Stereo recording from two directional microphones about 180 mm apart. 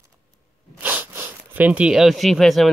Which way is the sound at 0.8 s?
10° right (ahead or behind).